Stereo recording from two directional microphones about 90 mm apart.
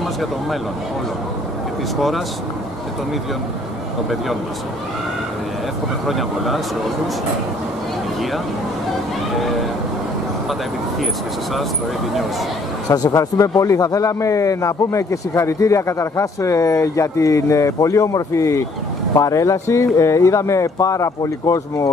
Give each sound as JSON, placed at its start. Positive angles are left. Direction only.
{"t": 2.0, "sound": "speech", "side_deg": 0}
{"t": 6.0, "sound": "speech", "side_deg": 0}
{"t": 12.9, "sound": "a man's voice", "side_deg": 45}